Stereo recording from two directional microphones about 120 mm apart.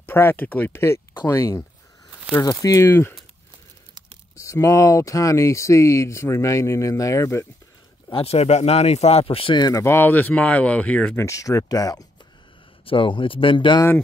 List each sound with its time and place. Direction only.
0.0 s speech: 20° left (ahead or behind)
2.6 s speech: 25° left (ahead or behind)
4.4 s speech: 25° left (ahead or behind)
8.1 s speech: 55° left (ahead or behind); by 9.8 s 35° left (ahead or behind)
9.8 s speech: 15° left (ahead or behind)
11.1 s speech: 25° left (ahead or behind)
12.8 s speech: 45° left (ahead or behind)